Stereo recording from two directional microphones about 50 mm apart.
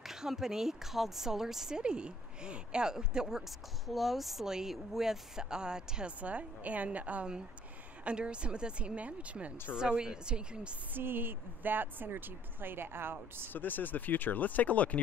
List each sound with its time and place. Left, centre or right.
0.0 s speech: centre
6.2 s speech: right
9.8 s speech: centre
10.9 s speech: right
13.5 s speech: left